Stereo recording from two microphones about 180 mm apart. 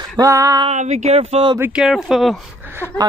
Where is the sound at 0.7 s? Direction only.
40° right (ahead or behind).